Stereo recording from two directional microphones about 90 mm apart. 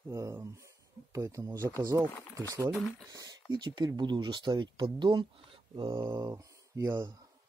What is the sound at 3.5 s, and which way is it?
Speech, 55° right (ahead or behind).